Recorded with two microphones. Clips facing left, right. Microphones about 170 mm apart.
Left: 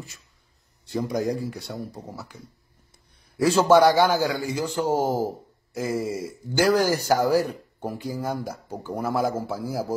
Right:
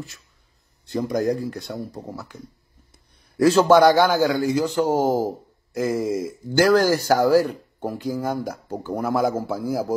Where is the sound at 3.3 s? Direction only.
5° left (ahead or behind).